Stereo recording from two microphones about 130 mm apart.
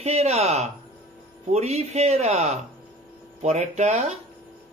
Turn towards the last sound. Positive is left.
turn(degrees=-65)  # may be behind; listen again after turning